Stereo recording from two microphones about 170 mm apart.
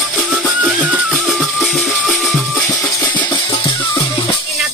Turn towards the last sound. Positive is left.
turn(degrees=10)  # may be behind; listen again after turning